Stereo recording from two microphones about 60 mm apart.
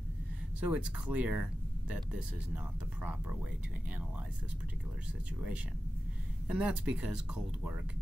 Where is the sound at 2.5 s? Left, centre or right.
Right.